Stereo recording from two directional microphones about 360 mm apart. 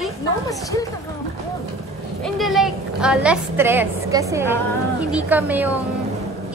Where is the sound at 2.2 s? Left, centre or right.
Centre.